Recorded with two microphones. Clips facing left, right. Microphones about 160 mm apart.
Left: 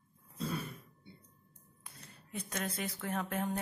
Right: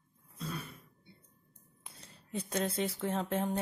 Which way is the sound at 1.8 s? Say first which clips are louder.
Even; 30° right (ahead or behind).